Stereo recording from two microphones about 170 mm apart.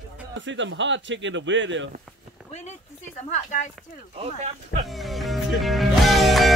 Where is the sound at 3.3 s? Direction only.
45° left (ahead or behind).